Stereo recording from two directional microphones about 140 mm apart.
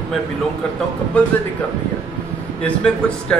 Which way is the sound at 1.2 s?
10° left (ahead or behind).